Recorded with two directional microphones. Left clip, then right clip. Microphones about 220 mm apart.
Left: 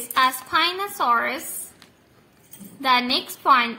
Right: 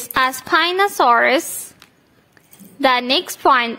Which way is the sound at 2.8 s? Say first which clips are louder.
Right 4 dB; 45° right (ahead or behind).